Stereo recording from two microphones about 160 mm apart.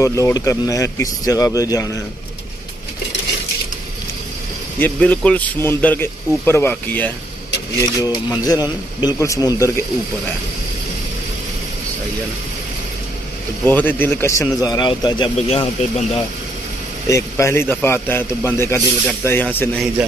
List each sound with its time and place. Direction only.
0.0 s a man's voice: 20° left (ahead or behind)
4.7 s a man's voice: 10° left (ahead or behind)
8.0 s a man's voice: 25° left (ahead or behind)
13.7 s a man's voice: 10° left (ahead or behind); by 15.3 s 30° left (ahead or behind)
15.3 s speech: 40° left (ahead or behind)
17.1 s a man's voice: 15° left (ahead or behind)